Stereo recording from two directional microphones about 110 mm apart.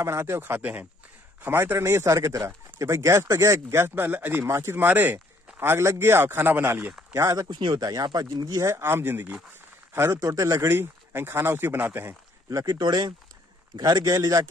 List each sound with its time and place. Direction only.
0.0 s speech: 25° right (ahead or behind)
7.2 s speech: 30° right (ahead or behind)
7.4 s speech: 45° right (ahead or behind); by 12.2 s 20° right (ahead or behind)
12.4 s speech: 35° right (ahead or behind)